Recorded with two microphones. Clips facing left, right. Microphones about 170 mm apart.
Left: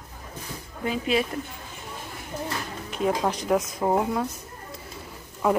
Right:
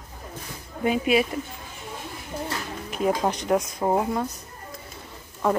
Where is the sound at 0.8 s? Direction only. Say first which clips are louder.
Right 4 dB; 15° right (ahead or behind).